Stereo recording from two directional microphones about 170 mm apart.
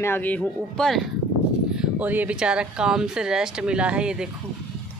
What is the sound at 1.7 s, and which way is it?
Speech, 10° right (ahead or behind).